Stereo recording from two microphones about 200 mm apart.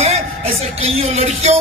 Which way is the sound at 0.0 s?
30° right (ahead or behind).